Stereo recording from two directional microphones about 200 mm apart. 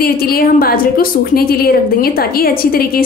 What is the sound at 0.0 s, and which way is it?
A woman's voice, 50° left (ahead or behind).